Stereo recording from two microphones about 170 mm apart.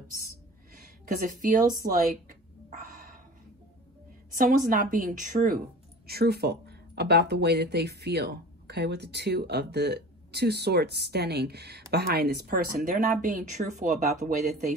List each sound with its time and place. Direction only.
1.2 s a woman's voice: 50° right (ahead or behind)
4.4 s a woman's voice: 55° right (ahead or behind)
6.0 s a woman's voice: 70° right (ahead or behind); by 14.7 s 45° right (ahead or behind)